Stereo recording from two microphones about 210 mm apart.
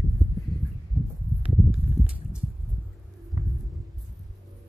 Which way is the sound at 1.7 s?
5° right (ahead or behind).